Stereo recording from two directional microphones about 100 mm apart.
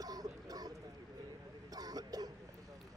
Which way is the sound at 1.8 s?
40° right (ahead or behind).